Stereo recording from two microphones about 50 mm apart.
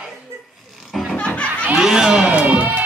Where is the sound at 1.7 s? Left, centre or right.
Centre.